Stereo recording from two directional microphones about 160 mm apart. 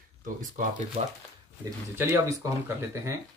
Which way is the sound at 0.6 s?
55° right (ahead or behind).